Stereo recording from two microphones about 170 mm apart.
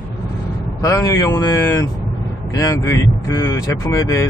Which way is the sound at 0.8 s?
20° left (ahead or behind).